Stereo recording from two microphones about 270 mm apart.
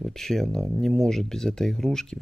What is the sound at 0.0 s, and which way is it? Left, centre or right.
Speech, centre.